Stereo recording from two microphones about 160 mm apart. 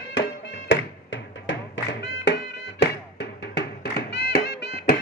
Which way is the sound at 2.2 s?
90° left.